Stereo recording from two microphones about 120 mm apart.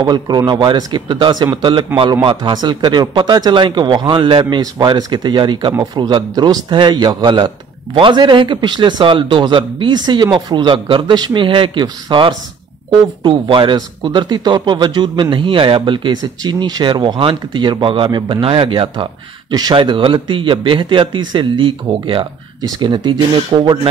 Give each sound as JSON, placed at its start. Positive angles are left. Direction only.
{"t": 0.0, "sound": "speech", "side_deg": -35}
{"t": 19.5, "sound": "speech", "side_deg": -35}
{"t": 19.8, "sound": "speech", "side_deg": -45}